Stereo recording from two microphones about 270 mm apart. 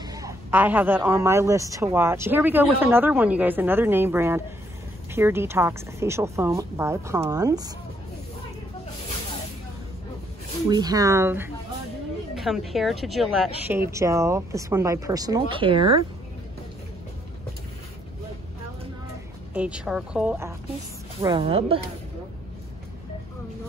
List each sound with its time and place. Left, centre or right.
0.0 s a man's voice: centre
10.7 s a man's voice: centre
19.5 s speech: centre; by 21.8 s right